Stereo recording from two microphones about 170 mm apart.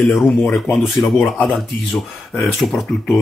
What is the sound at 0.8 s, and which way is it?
Speech, centre (ahead or behind).